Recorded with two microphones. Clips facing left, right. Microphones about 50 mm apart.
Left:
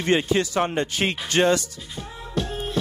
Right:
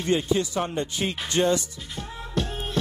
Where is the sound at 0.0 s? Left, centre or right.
Left.